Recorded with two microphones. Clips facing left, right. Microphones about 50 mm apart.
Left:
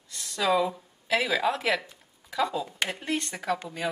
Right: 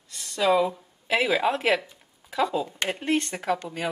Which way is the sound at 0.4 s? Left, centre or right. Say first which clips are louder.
Right 3 dB; centre.